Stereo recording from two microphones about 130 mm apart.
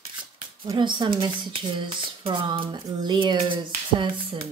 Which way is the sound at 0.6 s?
35° right (ahead or behind).